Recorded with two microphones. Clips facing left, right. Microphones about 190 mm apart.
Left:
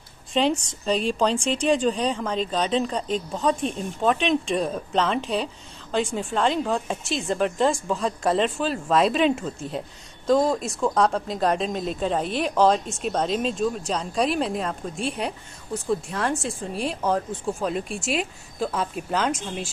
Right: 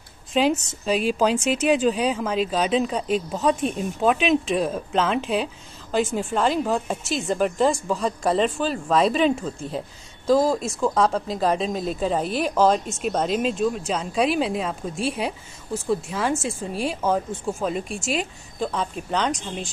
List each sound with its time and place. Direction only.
0.3 s a woman's voice: 5° right (ahead or behind)